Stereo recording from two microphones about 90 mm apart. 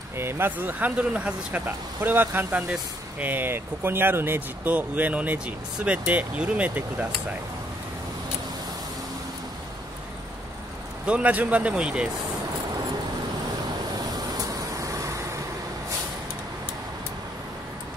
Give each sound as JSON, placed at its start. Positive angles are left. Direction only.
{"t": 0.2, "sound": "speech", "side_deg": -25}
{"t": 11.1, "sound": "speech", "side_deg": -15}
{"t": 14.1, "sound": "vehicle", "side_deg": -40}